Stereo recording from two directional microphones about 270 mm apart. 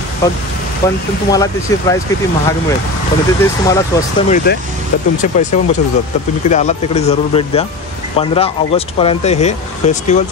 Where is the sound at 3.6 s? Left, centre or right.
Centre.